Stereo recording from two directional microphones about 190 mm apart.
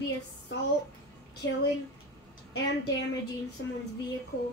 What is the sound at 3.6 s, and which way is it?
Speech, 70° left (ahead or behind).